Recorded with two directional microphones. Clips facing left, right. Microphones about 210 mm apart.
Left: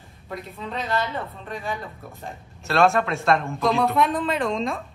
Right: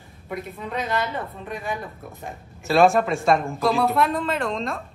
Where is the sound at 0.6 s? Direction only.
15° right (ahead or behind).